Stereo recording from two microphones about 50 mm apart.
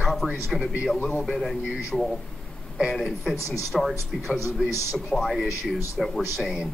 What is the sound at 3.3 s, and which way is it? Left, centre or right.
Speech, left.